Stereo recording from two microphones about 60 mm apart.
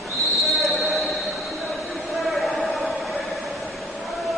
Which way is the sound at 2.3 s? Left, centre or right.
Centre.